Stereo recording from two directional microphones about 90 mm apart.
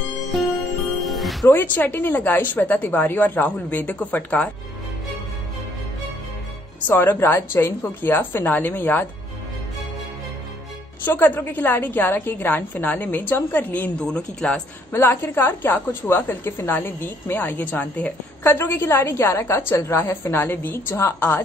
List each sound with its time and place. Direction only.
1.0 s music: centre (ahead or behind)
1.5 s a woman's voice: 20° left (ahead or behind)
6.9 s a woman's voice: 25° left (ahead or behind)
11.1 s a woman's voice: 20° left (ahead or behind)
14.9 s a woman's voice: 25° left (ahead or behind)